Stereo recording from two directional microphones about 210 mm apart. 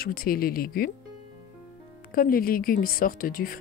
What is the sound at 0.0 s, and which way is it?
Speech, 45° left (ahead or behind).